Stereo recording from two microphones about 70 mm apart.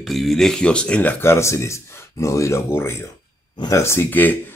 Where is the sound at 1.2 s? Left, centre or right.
Left.